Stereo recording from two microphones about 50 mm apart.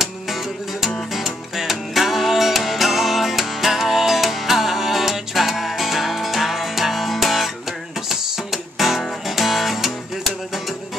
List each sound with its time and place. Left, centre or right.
0.0 s music: centre